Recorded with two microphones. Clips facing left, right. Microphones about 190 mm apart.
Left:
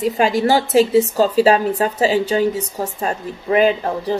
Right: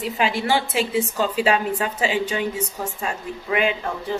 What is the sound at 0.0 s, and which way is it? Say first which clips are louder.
A woman's voice: left 7 dB; 40° left (ahead or behind).